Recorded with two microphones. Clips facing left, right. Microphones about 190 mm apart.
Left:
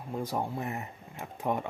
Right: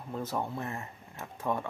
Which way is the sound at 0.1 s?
10° left (ahead or behind).